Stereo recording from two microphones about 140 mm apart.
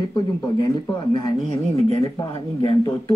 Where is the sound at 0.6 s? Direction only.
30° left (ahead or behind).